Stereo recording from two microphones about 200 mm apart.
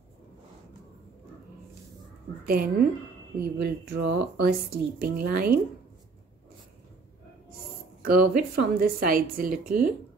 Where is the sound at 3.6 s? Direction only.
55° right (ahead or behind).